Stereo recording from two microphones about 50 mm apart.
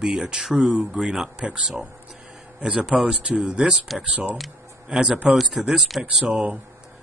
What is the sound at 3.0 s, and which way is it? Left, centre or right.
Speech, centre.